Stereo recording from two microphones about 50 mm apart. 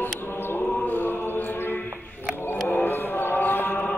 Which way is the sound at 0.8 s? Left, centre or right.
Left.